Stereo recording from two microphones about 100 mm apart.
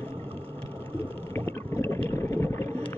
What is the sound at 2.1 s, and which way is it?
Boat, 30° left (ahead or behind).